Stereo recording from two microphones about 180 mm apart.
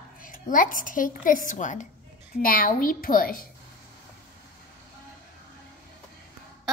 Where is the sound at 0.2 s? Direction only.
50° left (ahead or behind).